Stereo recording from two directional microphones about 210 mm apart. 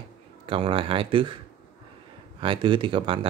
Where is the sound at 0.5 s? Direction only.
25° right (ahead or behind).